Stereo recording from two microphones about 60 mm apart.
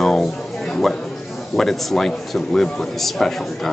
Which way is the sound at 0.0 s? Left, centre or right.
Centre.